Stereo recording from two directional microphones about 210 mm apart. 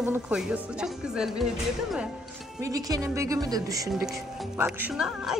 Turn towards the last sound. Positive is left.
turn(degrees=-5)  # may be behind; listen again after turning